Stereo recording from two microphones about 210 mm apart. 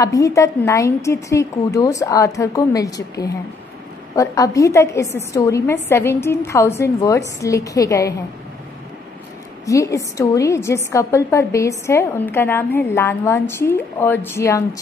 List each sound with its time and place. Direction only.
0.0 s a woman's voice: 15° left (ahead or behind)
9.7 s a woman's voice: 15° left (ahead or behind)